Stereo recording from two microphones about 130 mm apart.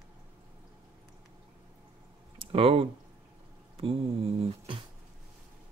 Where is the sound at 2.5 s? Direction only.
45° right (ahead or behind).